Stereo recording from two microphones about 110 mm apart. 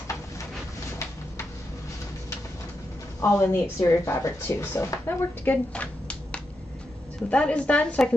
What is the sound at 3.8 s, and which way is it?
Speech, 25° left (ahead or behind).